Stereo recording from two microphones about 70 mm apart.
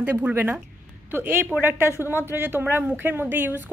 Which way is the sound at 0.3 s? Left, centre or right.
Right.